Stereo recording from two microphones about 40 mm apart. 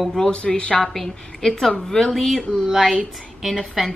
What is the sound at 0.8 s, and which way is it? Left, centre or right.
A woman's voice, centre.